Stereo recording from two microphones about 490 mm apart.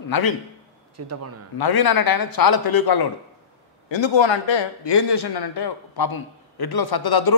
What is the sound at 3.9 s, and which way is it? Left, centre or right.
A man's voice, left.